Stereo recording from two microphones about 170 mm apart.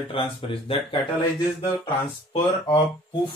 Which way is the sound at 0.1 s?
30° left (ahead or behind).